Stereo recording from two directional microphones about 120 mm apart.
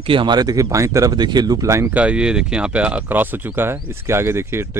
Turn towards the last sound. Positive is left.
turn(degrees=-20)  # may be behind; listen again after turning